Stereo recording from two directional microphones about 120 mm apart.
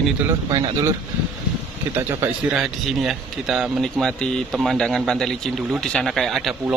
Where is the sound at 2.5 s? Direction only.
5° right (ahead or behind).